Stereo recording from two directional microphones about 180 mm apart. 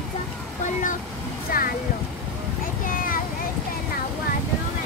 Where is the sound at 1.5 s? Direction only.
50° left (ahead or behind).